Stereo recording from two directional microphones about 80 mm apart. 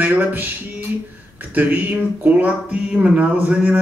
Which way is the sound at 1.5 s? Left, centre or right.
Right.